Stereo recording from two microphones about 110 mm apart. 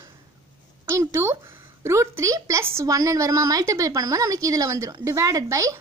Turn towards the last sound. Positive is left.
turn(degrees=-30)  # may be behind; listen again after turning